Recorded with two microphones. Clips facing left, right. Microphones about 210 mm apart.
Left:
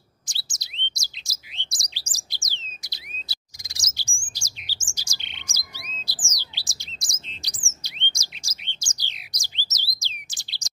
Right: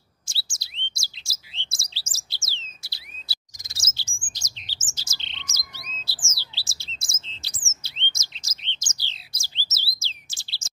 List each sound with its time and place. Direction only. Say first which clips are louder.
0.3 s chirp: even; 20° left (ahead or behind)
4.4 s bird: left 1 dB; 10° left (ahead or behind)